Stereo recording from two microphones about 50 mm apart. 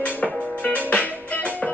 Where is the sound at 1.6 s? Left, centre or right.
Centre.